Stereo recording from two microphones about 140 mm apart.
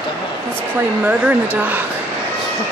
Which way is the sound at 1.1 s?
10° right (ahead or behind).